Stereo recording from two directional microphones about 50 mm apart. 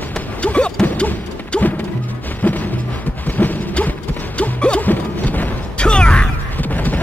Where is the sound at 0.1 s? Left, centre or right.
Left.